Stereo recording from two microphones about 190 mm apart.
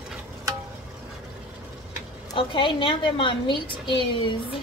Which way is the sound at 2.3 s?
25° left (ahead or behind).